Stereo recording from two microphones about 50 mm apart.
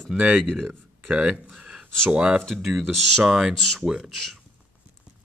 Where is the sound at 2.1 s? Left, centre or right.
Right.